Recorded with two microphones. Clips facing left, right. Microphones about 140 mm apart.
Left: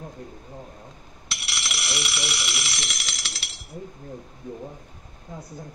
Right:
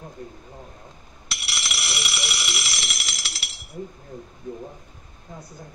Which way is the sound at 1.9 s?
10° right (ahead or behind).